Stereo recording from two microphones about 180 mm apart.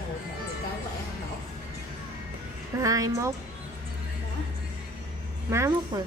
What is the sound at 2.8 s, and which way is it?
Speech, 20° right (ahead or behind).